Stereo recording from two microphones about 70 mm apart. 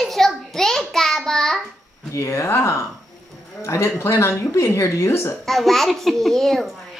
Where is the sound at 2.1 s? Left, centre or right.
Left.